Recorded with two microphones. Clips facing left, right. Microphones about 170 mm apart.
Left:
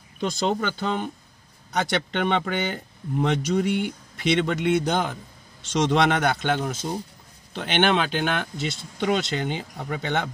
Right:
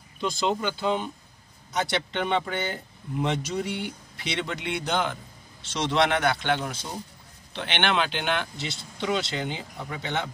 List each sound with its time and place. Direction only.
0.2 s speech: 50° left (ahead or behind)